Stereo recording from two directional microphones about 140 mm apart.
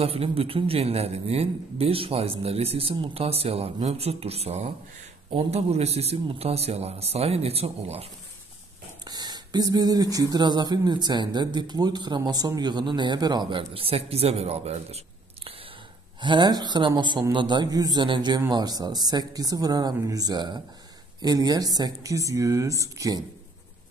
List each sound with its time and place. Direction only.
0.0 s a man's voice: 45° right (ahead or behind)
9.0 s speech: 30° right (ahead or behind)
16.2 s speech: 35° right (ahead or behind)